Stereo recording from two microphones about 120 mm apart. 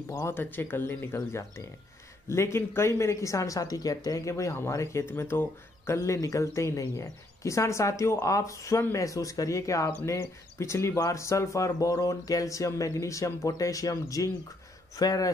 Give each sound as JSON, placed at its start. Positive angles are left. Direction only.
{"t": 0.1, "sound": "a man's voice", "side_deg": 20}